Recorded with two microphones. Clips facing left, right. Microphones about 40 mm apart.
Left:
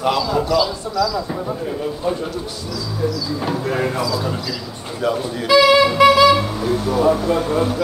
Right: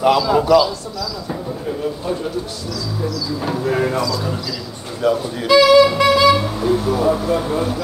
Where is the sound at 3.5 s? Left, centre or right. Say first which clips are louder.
Right 3 dB; centre.